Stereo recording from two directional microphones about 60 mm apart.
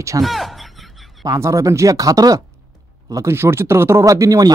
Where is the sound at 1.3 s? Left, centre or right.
Right.